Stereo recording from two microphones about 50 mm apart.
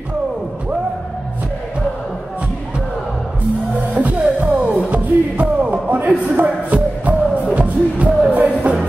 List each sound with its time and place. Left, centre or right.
3.9 s music: right